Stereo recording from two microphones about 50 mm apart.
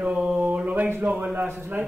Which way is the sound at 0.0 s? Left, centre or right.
Right.